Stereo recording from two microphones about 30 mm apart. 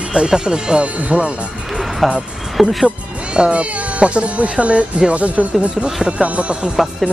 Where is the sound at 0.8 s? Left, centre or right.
Right.